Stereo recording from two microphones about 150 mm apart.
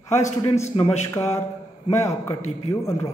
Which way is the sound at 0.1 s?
20° left (ahead or behind).